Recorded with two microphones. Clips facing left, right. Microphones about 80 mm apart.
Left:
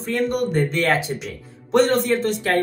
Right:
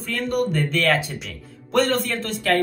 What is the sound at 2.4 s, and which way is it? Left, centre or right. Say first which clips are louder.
Speech: right 1 dB; left.